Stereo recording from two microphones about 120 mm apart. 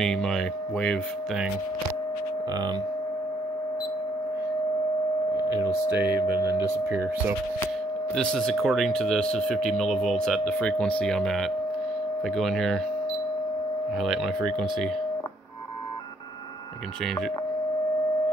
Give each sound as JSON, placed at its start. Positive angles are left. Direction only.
{"t": 0.0, "sound": "speech", "side_deg": 5}
{"t": 5.6, "sound": "speech", "side_deg": -15}
{"t": 8.1, "sound": "speech", "side_deg": 5}
{"t": 13.9, "sound": "speech", "side_deg": 0}